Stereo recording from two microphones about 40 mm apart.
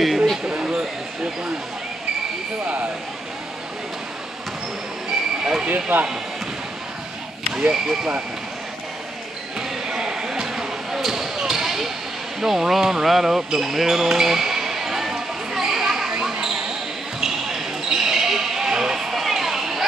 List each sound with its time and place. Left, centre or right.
0.0 s a sound: centre
0.5 s basketball bounce: centre
5.4 s speech: centre
5.9 s speech: right
7.5 s speech: centre
9.6 s basketball bounce: centre
12.4 s music: centre
17.2 s basketball bounce: centre